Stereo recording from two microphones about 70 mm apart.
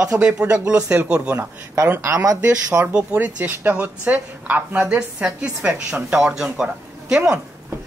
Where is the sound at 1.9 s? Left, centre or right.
Right.